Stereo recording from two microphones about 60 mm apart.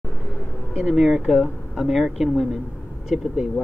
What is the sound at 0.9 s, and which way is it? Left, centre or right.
Speech, centre.